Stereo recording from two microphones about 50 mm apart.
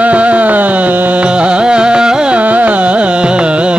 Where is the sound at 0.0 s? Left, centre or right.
Right.